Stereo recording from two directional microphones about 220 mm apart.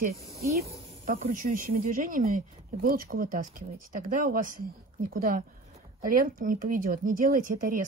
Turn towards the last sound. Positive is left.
turn(degrees=-35)  # may be behind; listen again after turning